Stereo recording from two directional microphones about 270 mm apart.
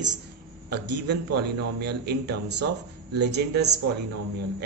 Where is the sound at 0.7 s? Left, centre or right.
Right.